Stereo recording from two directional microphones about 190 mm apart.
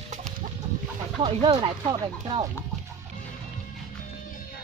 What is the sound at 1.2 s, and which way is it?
Speech, 25° right (ahead or behind).